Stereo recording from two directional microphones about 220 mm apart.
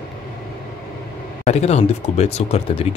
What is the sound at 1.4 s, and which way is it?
Speech, 30° left (ahead or behind).